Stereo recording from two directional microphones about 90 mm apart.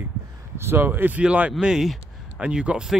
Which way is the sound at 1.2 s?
10° right (ahead or behind).